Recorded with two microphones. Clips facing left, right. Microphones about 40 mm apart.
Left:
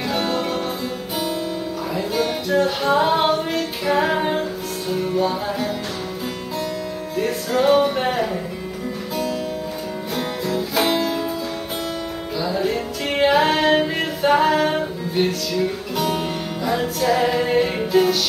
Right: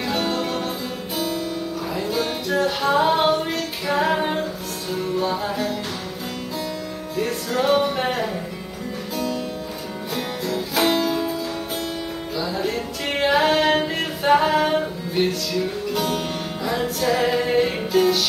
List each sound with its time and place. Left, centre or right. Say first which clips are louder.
0.0 s music: left 1 dB; centre
1.1 s music: even; centre
2.0 s music: left 3 dB; centre
7.2 s music: left 2 dB; centre
10.1 s music: left 2 dB; centre
12.4 s music: left 3 dB; centre